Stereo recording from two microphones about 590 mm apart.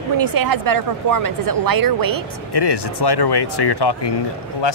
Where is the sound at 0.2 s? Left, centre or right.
Right.